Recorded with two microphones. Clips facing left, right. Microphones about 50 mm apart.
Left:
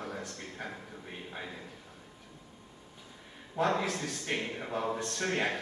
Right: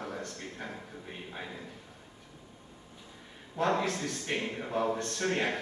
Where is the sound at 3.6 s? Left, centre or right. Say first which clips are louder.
Right 1 dB; centre.